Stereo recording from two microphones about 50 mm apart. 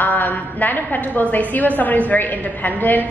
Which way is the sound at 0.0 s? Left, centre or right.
Left.